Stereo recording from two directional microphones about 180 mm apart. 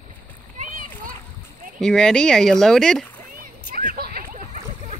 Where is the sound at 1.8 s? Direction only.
5° left (ahead or behind).